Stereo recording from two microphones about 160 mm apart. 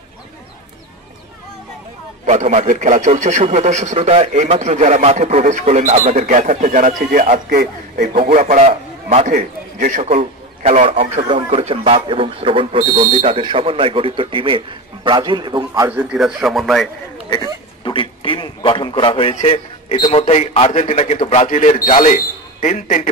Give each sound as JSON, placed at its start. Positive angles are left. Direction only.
{"t": 2.2, "sound": "speech", "side_deg": -45}
{"t": 8.3, "sound": "a man's voice", "side_deg": -50}
{"t": 15.9, "sound": "speech", "side_deg": -5}
{"t": 17.8, "sound": "a man's voice", "side_deg": 30}